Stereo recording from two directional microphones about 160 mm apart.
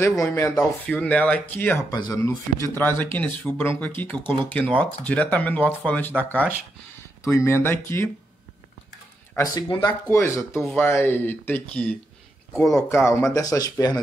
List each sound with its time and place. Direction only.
0.2 s speech: 15° left (ahead or behind)
1.9 s speech: 25° left (ahead or behind)
6.1 s speech: 10° right (ahead or behind)
7.2 s speech: 15° left (ahead or behind)
9.4 s speech: 25° left (ahead or behind)
9.8 s speech: 15° left (ahead or behind)